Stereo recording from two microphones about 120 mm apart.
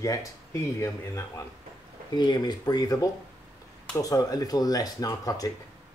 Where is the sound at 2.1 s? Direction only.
40° left (ahead or behind).